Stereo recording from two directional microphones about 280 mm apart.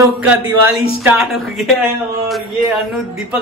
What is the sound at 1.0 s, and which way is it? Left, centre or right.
Speech, centre.